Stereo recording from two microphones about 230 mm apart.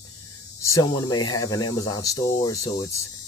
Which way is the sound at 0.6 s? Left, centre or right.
Centre.